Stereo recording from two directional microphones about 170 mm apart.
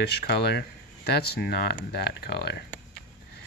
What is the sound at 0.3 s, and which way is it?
Speech, 70° left (ahead or behind).